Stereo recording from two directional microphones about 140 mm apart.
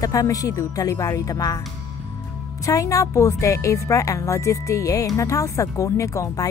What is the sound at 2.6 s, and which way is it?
A woman's voice, 25° left (ahead or behind).